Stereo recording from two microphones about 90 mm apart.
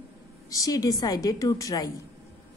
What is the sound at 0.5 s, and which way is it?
A woman's voice, 40° left (ahead or behind).